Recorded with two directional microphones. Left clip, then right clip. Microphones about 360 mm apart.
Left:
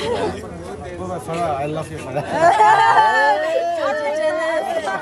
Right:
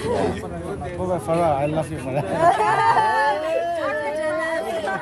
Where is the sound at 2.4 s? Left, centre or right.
Left.